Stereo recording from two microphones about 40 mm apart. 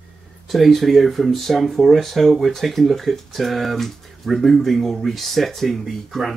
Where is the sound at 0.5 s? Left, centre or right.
Centre.